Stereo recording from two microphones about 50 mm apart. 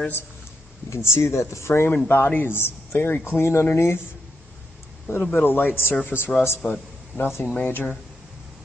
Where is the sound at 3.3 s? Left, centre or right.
Left.